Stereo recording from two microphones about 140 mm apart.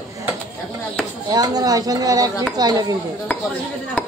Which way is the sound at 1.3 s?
25° right (ahead or behind).